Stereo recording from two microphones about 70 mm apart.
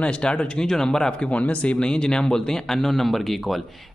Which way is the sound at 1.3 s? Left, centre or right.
Centre.